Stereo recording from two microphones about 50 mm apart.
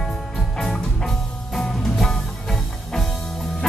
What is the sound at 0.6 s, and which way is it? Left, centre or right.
Music, centre.